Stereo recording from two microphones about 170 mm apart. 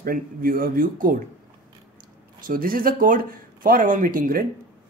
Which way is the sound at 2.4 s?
55° right (ahead or behind).